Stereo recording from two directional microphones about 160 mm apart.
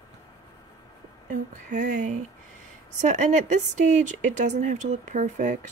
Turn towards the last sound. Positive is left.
turn(degrees=-50)  # may be behind; listen again after turning